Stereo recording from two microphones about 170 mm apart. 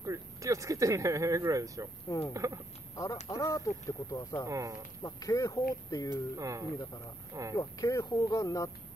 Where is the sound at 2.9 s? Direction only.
20° left (ahead or behind).